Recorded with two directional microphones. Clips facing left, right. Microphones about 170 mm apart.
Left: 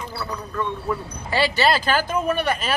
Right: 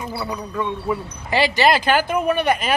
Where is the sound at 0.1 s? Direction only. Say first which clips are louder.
Right 3 dB; 15° right (ahead or behind).